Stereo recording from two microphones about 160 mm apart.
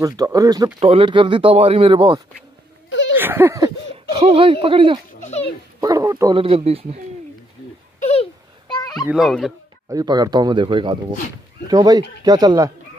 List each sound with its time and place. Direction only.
0.0 s speech: 25° right (ahead or behind)
0.7 s speech: 35° right (ahead or behind)
3.2 s speech: 10° right (ahead or behind)
4.1 s speech: 35° right (ahead or behind)
5.2 s dog: 45° left (ahead or behind)
5.8 s speech: 20° right (ahead or behind)
6.3 s speech: 35° right (ahead or behind)
8.0 s a sound: 40° left (ahead or behind)
9.0 s a child's voice: 5° right (ahead or behind)
9.8 s speech: 25° right (ahead or behind)